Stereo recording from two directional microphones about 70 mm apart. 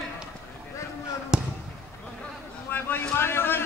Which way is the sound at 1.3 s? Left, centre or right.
Centre.